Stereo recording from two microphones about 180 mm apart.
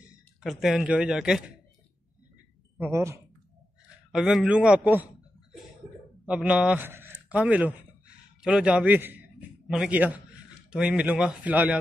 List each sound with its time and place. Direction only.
0.4 s speech: centre (ahead or behind)
2.8 s a man's voice: 15° right (ahead or behind)
4.1 s speech: centre (ahead or behind)
6.2 s a man's voice: 5° right (ahead or behind)